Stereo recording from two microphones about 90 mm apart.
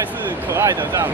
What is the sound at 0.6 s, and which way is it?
Speech, 30° right (ahead or behind).